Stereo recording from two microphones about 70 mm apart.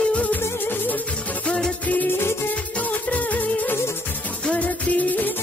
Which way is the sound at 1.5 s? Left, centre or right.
Centre.